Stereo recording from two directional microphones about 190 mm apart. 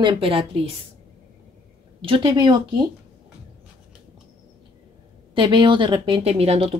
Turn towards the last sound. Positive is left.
turn(degrees=-35)  # may be behind; listen again after turning